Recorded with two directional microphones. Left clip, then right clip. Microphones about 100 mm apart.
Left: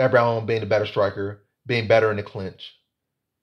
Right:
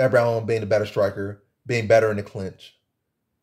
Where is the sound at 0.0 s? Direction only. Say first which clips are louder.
Even; 30° right (ahead or behind).